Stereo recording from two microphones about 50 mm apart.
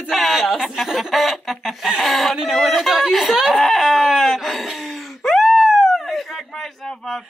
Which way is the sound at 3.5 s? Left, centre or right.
Centre.